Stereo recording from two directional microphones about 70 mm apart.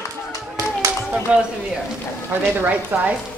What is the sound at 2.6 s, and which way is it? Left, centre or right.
Speech, right.